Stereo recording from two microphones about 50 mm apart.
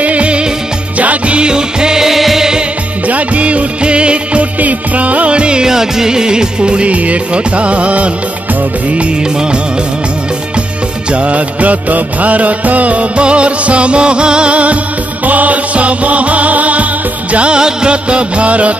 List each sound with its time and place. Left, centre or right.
0.0 s music: right
3.1 s music of bollywood: right
8.9 s music: right
11.1 s music: right